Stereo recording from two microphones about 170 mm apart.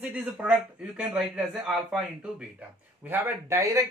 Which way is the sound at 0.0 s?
10° right (ahead or behind).